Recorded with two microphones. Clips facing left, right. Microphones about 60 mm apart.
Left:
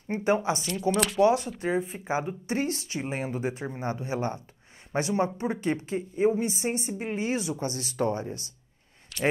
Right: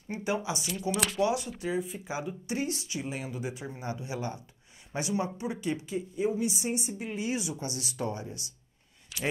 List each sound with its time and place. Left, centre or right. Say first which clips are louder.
0.1 s speech: left 6 dB; left
0.9 s speech: left 5 dB; centre
1.2 s speech: left 7 dB; left
9.1 s a sound: left 6 dB; centre